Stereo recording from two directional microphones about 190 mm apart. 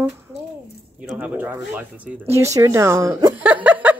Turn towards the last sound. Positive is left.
turn(degrees=-10)  # may be behind; listen again after turning